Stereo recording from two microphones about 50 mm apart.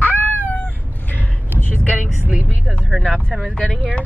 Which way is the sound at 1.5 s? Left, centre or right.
Left.